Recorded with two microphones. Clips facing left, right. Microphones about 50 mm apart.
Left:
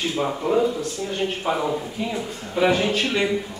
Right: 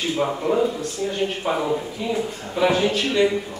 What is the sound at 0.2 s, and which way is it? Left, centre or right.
Speech, centre.